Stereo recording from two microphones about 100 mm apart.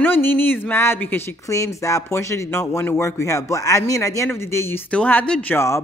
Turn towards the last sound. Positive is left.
turn(degrees=15)  # may be behind; listen again after turning